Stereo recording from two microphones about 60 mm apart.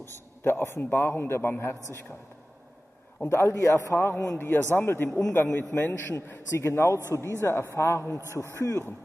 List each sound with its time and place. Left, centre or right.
0.1 s a man's voice: left
3.3 s a man's voice: left
6.5 s a man's voice: left